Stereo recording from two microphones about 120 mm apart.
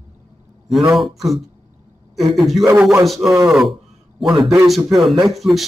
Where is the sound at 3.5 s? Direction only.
Centre (ahead or behind).